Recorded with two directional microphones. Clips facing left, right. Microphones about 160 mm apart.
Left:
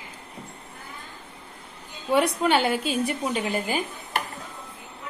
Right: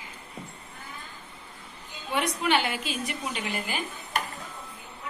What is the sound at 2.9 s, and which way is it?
Speech, 40° left (ahead or behind).